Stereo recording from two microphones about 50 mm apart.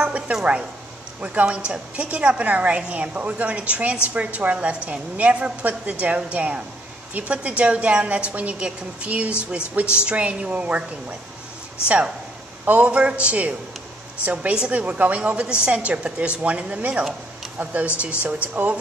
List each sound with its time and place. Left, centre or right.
0.0 s a sound: right
1.2 s a woman's voice: right
12.6 s a woman's voice: right